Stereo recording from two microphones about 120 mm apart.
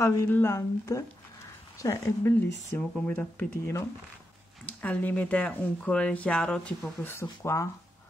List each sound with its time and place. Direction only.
0.0 s speech: 25° left (ahead or behind)
2.8 s speech: 10° left (ahead or behind)